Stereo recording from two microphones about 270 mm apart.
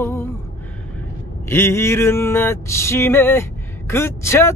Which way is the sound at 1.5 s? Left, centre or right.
Centre.